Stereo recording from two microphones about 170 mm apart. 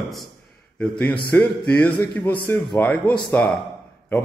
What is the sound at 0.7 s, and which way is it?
A man's voice, 5° left (ahead or behind).